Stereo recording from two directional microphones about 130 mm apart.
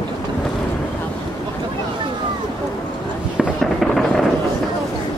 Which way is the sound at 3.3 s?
Centre (ahead or behind).